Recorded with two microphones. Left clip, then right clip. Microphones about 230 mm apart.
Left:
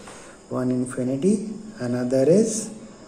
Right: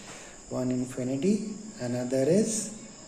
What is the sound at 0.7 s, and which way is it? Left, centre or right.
Speech, centre.